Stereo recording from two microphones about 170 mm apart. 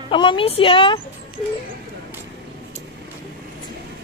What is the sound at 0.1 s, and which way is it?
Speech, 30° left (ahead or behind).